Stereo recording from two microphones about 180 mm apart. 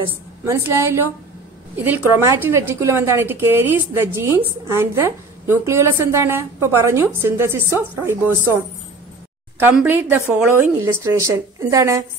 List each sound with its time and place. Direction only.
0.5 s a woman's voice: 15° right (ahead or behind)
9.6 s a woman's voice: 10° right (ahead or behind)